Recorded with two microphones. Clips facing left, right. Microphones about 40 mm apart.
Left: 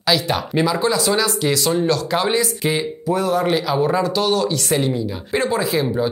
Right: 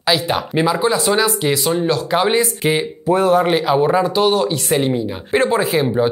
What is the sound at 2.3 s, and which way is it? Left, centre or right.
Speech, right.